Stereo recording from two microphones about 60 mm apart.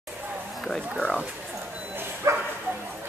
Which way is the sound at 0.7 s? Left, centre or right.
Centre.